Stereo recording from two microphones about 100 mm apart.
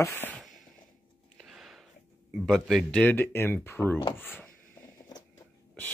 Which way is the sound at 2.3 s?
Centre (ahead or behind).